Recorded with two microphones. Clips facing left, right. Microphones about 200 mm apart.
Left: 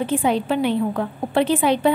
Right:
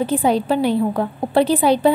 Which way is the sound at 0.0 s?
35° right (ahead or behind).